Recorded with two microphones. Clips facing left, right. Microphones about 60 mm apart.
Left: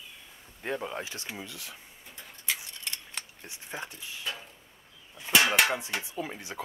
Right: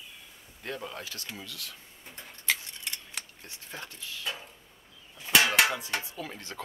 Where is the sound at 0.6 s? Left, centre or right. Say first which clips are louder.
Left 4 dB; left.